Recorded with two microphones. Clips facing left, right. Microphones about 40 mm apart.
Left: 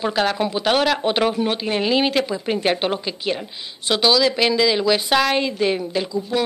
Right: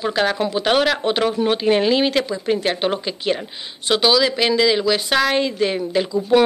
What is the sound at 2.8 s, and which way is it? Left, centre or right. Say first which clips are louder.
Speech: right 2 dB; centre.